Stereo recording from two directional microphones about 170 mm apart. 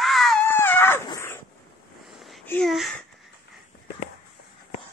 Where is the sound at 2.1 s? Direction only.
Centre (ahead or behind).